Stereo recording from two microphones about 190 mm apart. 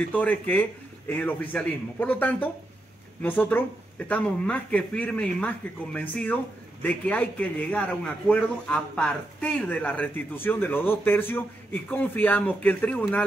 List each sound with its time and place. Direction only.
0.1 s speech: 10° left (ahead or behind)